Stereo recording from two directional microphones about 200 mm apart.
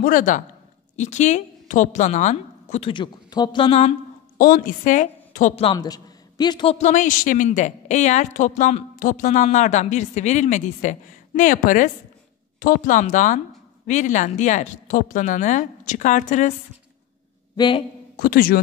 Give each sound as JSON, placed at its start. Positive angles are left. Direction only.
{"t": 0.0, "sound": "a man's voice", "side_deg": 40}
{"t": 4.4, "sound": "a woman's voice", "side_deg": 45}
{"t": 5.7, "sound": "a man's voice", "side_deg": 20}
{"t": 17.6, "sound": "speech", "side_deg": 25}
{"t": 18.1, "sound": "a man's voice", "side_deg": 45}